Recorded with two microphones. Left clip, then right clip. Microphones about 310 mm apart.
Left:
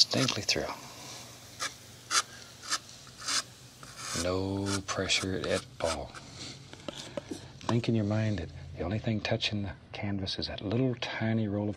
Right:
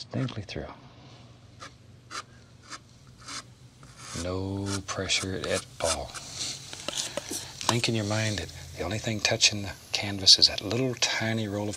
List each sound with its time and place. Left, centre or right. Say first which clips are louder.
0.0 s duck: left 10 dB; left
4.0 s speech: left 2 dB; centre; by 11.7 s right